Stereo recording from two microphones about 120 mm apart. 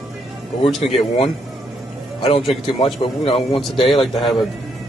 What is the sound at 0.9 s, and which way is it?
Speech, 55° left (ahead or behind).